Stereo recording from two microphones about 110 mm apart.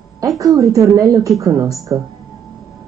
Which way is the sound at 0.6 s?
30° right (ahead or behind).